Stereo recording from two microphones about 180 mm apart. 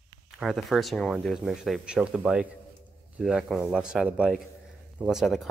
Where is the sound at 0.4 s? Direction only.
Centre (ahead or behind).